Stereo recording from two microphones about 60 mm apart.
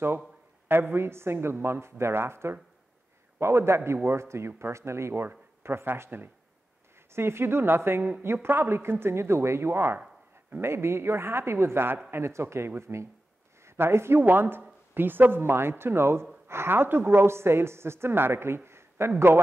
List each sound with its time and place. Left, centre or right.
0.7 s a woman's voice: right